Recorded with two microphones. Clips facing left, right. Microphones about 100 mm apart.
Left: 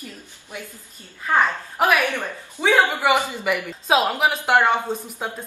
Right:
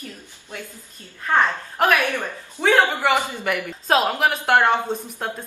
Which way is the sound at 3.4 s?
Centre (ahead or behind).